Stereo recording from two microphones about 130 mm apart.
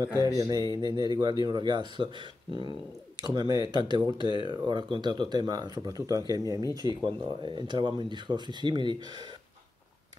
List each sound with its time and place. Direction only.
0.4 s speech: 30° right (ahead or behind)
3.2 s speech: 30° right (ahead or behind)